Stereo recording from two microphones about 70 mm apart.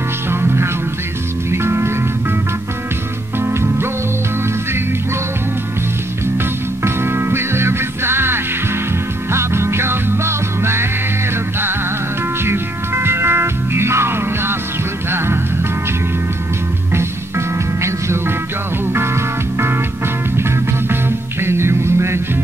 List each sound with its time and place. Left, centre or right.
0.3 s music: right
3.4 s music: right
6.8 s music: right
12.4 s music: right
17.8 s music: right
20.9 s music: right